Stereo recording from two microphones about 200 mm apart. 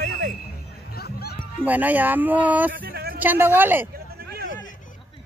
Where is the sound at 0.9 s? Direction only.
50° left (ahead or behind).